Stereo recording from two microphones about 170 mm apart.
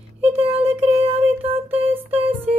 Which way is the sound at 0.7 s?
35° right (ahead or behind).